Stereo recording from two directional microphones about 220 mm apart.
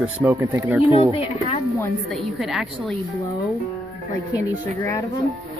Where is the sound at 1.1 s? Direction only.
25° left (ahead or behind).